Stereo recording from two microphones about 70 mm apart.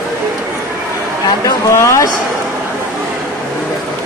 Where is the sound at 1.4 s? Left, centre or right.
Left.